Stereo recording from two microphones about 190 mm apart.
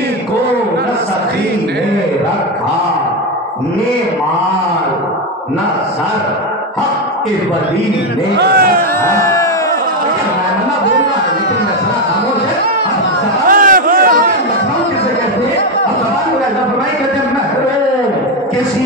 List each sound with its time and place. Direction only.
8.4 s a man's voice: 55° right (ahead or behind)
9.0 s speech: 15° left (ahead or behind)
13.5 s a sound: 45° right (ahead or behind)